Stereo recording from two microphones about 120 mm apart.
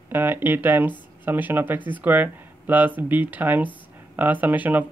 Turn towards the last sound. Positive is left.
turn(degrees=-15)  # may be behind; listen again after turning